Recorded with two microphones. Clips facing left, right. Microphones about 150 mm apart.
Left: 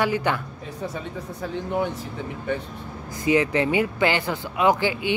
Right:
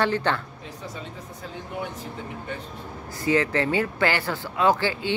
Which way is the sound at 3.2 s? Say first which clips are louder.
Left 2 dB; 15° left (ahead or behind).